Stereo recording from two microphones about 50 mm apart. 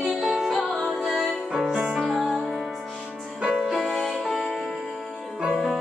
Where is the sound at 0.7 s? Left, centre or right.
Centre.